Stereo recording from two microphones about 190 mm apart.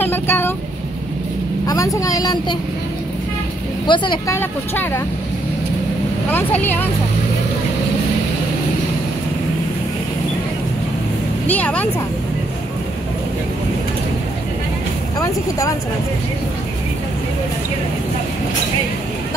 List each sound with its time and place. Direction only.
0.0 s vehicle: 10° left (ahead or behind)
1.7 s a woman's voice: 15° left (ahead or behind)
3.8 s a woman's voice: 25° left (ahead or behind)
4.4 s speech: 10° left (ahead or behind)
6.3 s speech: 10° left (ahead or behind)
11.4 s speech: 10° left (ahead or behind)